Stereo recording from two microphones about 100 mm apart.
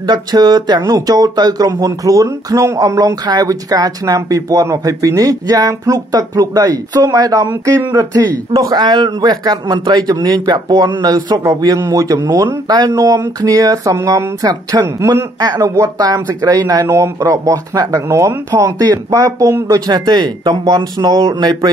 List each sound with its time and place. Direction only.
0.0 s speech: 45° right (ahead or behind)
16.8 s speech: 30° right (ahead or behind)
17.2 s speech: 40° right (ahead or behind)